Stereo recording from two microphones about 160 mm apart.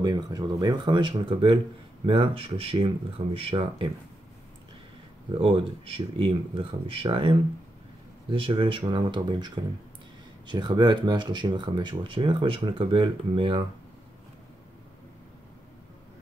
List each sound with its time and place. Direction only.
0.0 s speech: 25° right (ahead or behind)
5.4 s speech: 35° right (ahead or behind)